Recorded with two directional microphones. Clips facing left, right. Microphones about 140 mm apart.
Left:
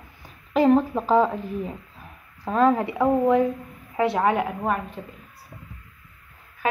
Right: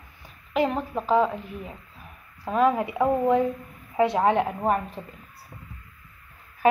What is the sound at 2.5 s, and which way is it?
Speech, 10° right (ahead or behind).